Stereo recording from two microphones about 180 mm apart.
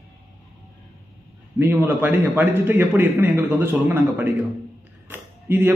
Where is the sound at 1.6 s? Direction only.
10° right (ahead or behind).